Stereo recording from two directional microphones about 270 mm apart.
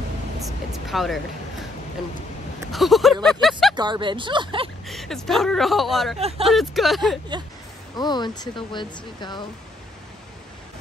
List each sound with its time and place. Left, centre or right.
0.4 s a sound: centre
2.7 s speech: centre
3.7 s speech: centre
4.8 s speech: centre
6.1 s speech: right
6.4 s speech: centre
7.9 s speech: centre